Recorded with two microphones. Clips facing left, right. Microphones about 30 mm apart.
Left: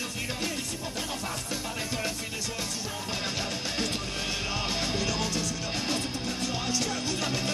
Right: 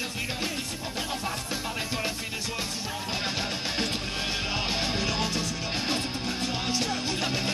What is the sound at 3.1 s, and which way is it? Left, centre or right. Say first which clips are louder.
Music: right 2 dB; right.